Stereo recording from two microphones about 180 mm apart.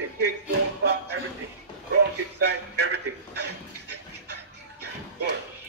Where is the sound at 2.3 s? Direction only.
70° right (ahead or behind).